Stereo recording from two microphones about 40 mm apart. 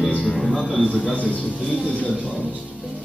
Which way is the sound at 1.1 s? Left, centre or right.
Left.